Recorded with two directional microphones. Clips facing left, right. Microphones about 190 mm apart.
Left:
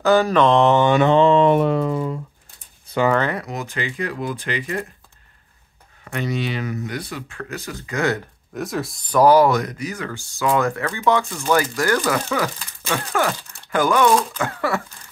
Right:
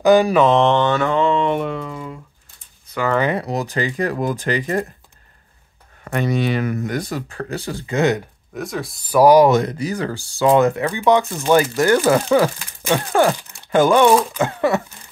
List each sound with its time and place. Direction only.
0.0 s mantra: 15° right (ahead or behind); by 1.0 s 10° left (ahead or behind)
1.0 s a sound: 30° left (ahead or behind)
3.3 s speech: 35° right (ahead or behind)
6.0 s speech: 50° right (ahead or behind); by 8.2 s 20° right (ahead or behind)
8.5 s mantra: centre (ahead or behind)
9.2 s speech: 15° right (ahead or behind)
9.6 s speech: 30° right (ahead or behind)